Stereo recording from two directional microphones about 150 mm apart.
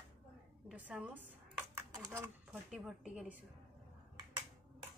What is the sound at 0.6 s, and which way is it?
A woman's voice, 5° right (ahead or behind).